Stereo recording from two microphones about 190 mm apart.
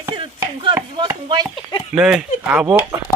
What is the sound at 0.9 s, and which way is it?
Chop, 20° right (ahead or behind).